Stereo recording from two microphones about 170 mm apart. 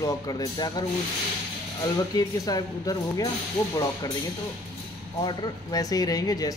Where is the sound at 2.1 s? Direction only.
20° left (ahead or behind).